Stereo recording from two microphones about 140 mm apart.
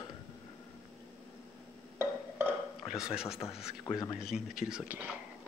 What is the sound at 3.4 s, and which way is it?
Speech, 40° left (ahead or behind).